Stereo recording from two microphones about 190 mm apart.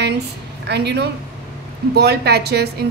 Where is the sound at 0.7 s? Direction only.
60° right (ahead or behind).